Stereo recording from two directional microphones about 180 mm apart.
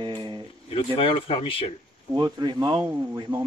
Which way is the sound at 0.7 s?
30° left (ahead or behind).